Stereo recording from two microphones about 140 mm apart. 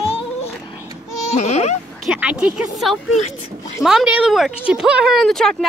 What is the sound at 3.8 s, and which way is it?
Speech, 5° right (ahead or behind).